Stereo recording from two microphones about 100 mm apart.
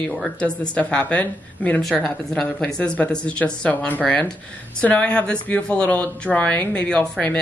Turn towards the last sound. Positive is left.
turn(degrees=10)  # may be behind; listen again after turning